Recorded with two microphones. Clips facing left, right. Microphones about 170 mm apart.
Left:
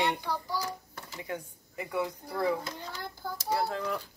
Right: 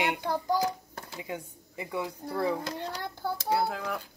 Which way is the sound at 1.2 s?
20° right (ahead or behind).